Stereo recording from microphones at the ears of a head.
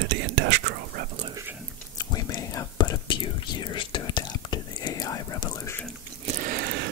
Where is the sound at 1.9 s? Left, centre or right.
Left.